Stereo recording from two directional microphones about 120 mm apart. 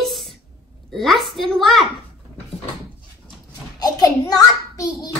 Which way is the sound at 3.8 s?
35° left (ahead or behind).